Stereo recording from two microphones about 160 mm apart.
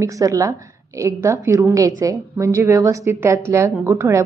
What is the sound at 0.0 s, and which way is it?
A woman's voice, 20° right (ahead or behind).